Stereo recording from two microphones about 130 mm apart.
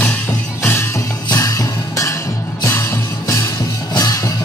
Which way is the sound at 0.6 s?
20° left (ahead or behind).